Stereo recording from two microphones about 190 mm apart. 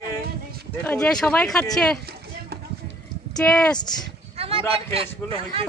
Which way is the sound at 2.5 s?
55° right (ahead or behind).